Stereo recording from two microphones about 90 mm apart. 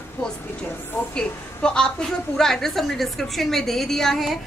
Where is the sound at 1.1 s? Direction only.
10° left (ahead or behind).